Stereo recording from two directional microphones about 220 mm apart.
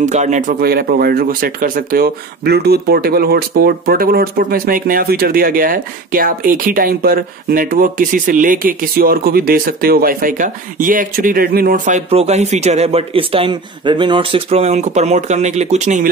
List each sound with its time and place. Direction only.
0.0 s speech: 35° right (ahead or behind)